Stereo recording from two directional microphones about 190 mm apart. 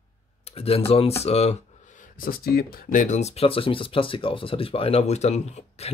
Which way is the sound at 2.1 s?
50° left (ahead or behind).